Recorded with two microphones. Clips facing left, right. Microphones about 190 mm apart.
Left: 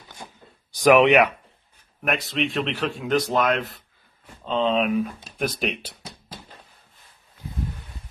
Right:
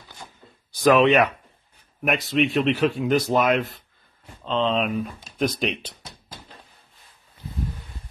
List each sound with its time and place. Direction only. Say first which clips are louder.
0.7 s speech: left 1 dB; 15° left (ahead or behind)
2.0 s speech: right 3 dB; centre (ahead or behind)